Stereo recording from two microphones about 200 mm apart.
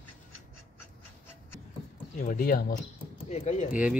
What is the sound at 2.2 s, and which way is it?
Speech, 45° left (ahead or behind).